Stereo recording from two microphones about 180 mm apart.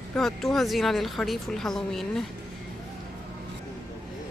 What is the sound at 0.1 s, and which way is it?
Speech, centre (ahead or behind).